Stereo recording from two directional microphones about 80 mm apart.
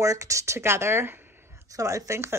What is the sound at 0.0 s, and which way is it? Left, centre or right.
Speech, right.